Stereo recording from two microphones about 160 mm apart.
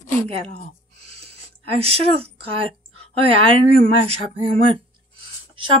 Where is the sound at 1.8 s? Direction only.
40° right (ahead or behind).